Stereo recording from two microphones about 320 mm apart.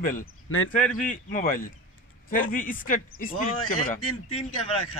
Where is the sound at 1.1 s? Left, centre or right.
Left.